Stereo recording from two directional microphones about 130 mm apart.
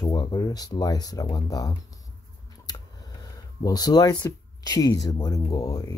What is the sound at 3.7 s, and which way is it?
Speech, 30° left (ahead or behind).